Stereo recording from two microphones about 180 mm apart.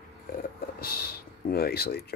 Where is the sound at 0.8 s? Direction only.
60° left (ahead or behind).